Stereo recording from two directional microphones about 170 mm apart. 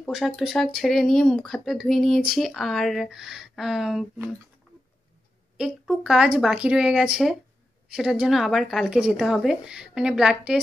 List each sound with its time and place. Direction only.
0.0 s speech: centre (ahead or behind)
5.6 s speech: 5° right (ahead or behind)